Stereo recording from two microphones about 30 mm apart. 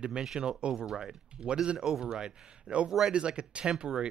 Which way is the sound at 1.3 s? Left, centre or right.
Right.